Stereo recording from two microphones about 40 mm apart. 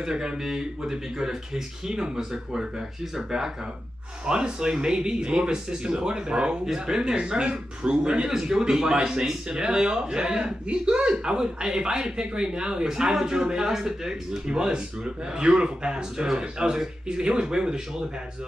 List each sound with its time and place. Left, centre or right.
0.0 s a man's voice: centre
4.3 s a man's voice: right